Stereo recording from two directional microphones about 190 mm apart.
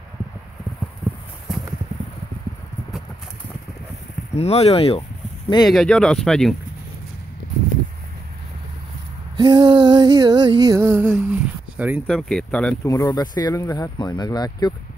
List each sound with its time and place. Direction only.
1.5 s clip-clop: centre (ahead or behind)
4.4 s speech: 35° left (ahead or behind)
5.6 s speech: centre (ahead or behind)
9.4 s a sound: 25° right (ahead or behind); by 12.7 s 5° left (ahead or behind)
12.8 s speech: 20° left (ahead or behind)